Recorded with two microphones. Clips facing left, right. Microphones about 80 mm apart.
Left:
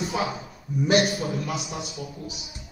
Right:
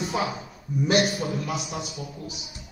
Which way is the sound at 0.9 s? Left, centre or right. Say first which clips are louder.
Left 2 dB; centre.